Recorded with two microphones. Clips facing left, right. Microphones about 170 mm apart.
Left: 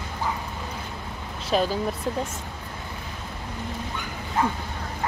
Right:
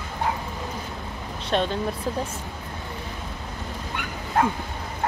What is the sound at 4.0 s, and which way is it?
Dog, 65° right (ahead or behind).